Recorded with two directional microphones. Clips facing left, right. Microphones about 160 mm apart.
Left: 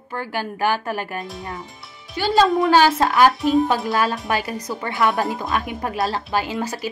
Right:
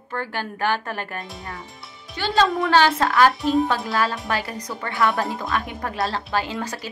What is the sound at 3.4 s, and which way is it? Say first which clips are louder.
Speech: left 2 dB; centre (ahead or behind).